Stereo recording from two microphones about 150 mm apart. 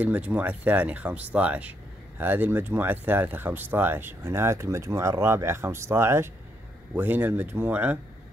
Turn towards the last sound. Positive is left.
turn(degrees=-10)  # may be behind; listen again after turning